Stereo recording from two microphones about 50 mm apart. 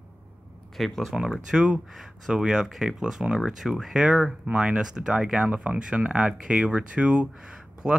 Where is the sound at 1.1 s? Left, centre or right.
Centre.